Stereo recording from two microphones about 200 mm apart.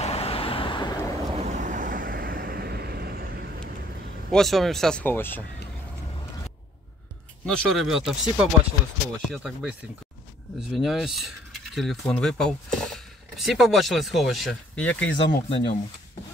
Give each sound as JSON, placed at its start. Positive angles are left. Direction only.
{"t": 0.0, "sound": "vehicle", "side_deg": 30}
{"t": 1.3, "sound": "vehicle", "side_deg": -35}
{"t": 4.3, "sound": "speech", "side_deg": 0}
{"t": 7.4, "sound": "speech", "side_deg": 0}
{"t": 15.1, "sound": "speech", "side_deg": 25}